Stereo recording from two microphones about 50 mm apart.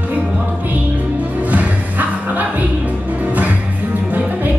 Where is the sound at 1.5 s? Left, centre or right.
Right.